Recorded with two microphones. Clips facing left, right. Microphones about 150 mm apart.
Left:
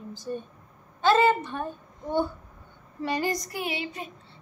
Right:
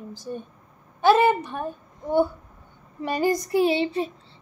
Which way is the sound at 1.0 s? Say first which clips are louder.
Right 3 dB; 10° right (ahead or behind).